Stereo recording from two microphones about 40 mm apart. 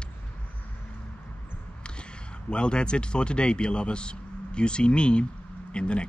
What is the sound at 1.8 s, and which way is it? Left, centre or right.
Speech, left.